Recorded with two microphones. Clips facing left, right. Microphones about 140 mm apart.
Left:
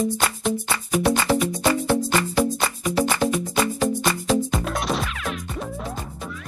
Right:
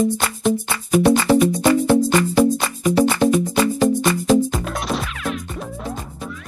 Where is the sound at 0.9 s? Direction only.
Centre (ahead or behind).